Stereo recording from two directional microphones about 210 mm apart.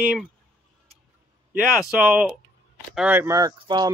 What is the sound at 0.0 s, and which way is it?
Speech, 5° right (ahead or behind).